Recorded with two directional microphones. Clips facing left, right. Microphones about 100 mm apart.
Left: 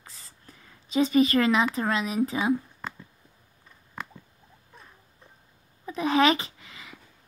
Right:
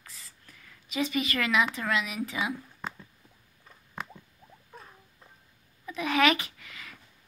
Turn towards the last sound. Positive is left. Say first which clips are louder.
# left 2 dB
turn(degrees=25)  # may be behind; listen again after turning